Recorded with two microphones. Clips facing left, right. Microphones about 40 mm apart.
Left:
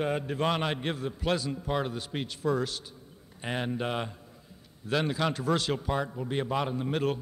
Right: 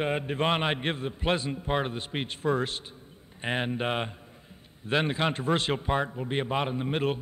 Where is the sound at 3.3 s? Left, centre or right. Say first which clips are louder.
Right 2 dB; right.